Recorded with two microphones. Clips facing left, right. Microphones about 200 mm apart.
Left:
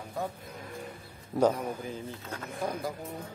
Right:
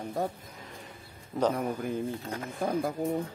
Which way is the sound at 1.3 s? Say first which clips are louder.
Left 3 dB; 5° left (ahead or behind).